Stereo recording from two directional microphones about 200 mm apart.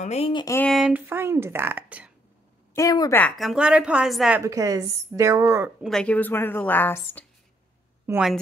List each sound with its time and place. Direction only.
0.0 s speech: 30° left (ahead or behind)
0.6 s speech: centre (ahead or behind)
2.7 s a woman's voice: 15° left (ahead or behind)
3.2 s a woman's voice: 5° left (ahead or behind)
4.4 s speech: 15° right (ahead or behind)
5.8 s a woman's voice: centre (ahead or behind)
8.1 s a woman's voice: 5° right (ahead or behind)